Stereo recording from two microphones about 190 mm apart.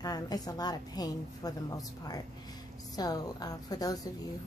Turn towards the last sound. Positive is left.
turn(degrees=20)  # may be behind; listen again after turning